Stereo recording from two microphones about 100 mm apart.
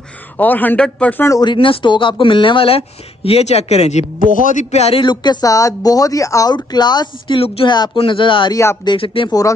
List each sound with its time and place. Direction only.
0.4 s a man's voice: 15° left (ahead or behind)
1.4 s speech: 55° left (ahead or behind)
3.3 s speech: 90° left
5.0 s speech: 45° left (ahead or behind)
6.5 s speech: 45° left (ahead or behind)
7.3 s speech: 75° left (ahead or behind)
7.6 s speech: 50° left (ahead or behind)